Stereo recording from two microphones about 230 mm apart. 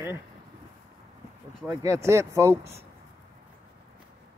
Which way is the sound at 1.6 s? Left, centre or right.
Centre.